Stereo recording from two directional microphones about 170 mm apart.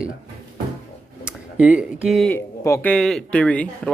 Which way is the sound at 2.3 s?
10° left (ahead or behind).